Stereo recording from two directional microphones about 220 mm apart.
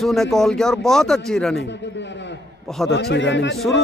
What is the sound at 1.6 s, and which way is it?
Speech, 55° left (ahead or behind).